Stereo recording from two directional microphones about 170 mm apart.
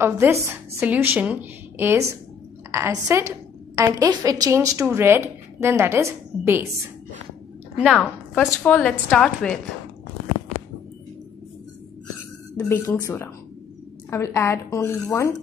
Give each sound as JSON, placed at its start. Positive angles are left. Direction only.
{"t": 0.0, "sound": "a woman's voice", "side_deg": -15}
{"t": 8.0, "sound": "a woman's voice", "side_deg": 10}
{"t": 12.5, "sound": "a woman's voice", "side_deg": 15}